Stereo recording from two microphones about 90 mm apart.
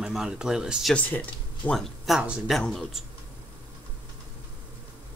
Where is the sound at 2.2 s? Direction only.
10° right (ahead or behind).